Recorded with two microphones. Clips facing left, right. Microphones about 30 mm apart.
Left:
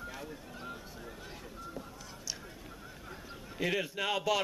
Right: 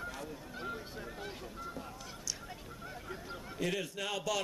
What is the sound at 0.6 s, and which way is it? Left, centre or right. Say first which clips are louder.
Honk: right 6 dB; centre.